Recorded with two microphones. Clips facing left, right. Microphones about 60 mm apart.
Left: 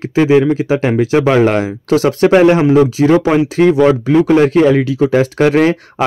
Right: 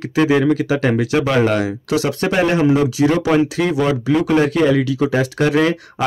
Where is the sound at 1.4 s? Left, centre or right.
Left.